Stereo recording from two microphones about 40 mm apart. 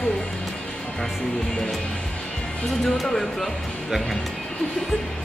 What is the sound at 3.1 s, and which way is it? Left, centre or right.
Speech, centre.